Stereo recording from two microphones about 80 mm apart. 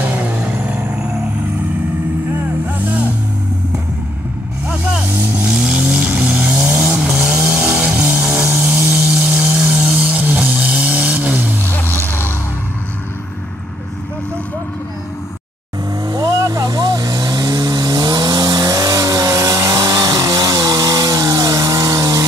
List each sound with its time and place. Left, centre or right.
0.0 s vehicle: centre
5.1 s vehicle: centre
8.6 s a sound: centre
9.1 s vehicle: centre
11.6 s vehicle: left
16.1 s vehicle: right
19.8 s chainsaw: right